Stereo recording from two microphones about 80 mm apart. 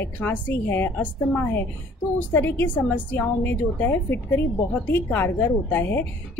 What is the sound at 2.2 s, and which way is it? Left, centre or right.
Speech, left.